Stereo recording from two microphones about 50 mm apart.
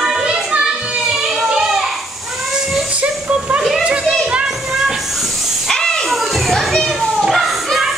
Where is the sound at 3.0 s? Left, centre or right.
Right.